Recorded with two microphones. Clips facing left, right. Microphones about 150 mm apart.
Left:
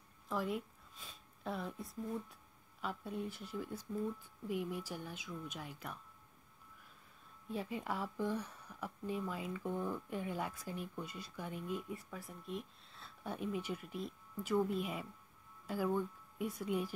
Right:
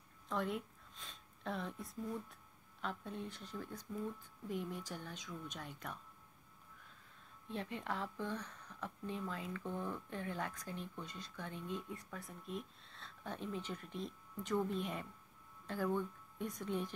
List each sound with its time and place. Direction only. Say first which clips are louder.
0.3 s speech: left 1 dB; centre (ahead or behind)
7.4 s speech: left 2 dB; 5° left (ahead or behind)